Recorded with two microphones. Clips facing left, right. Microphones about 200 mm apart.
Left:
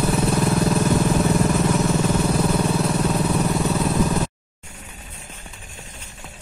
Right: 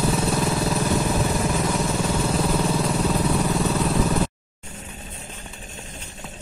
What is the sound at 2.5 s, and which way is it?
Vehicle, centre (ahead or behind).